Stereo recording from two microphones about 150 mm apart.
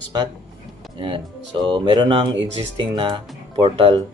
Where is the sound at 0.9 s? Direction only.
35° right (ahead or behind).